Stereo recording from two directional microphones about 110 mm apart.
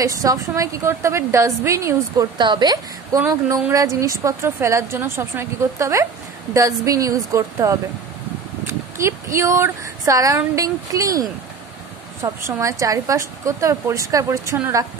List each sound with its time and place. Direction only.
0.0 s a woman's voice: 30° right (ahead or behind)
2.3 s a woman's voice: 45° right (ahead or behind)
8.9 s a woman's voice: 25° right (ahead or behind)
12.5 s a woman's voice: 30° right (ahead or behind)